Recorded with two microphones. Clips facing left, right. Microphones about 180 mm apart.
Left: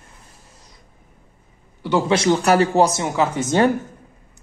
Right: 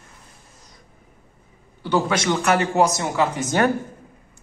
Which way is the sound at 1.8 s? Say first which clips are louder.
Left 3 dB; 25° left (ahead or behind).